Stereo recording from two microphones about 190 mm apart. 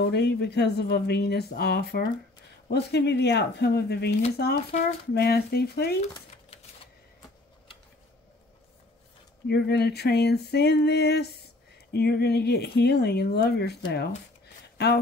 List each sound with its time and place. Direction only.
0.0 s speech: 60° left (ahead or behind)
9.5 s speech: 60° left (ahead or behind)